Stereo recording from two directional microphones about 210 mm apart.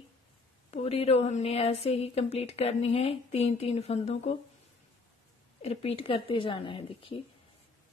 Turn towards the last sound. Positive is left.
turn(degrees=25)  # may be behind; listen again after turning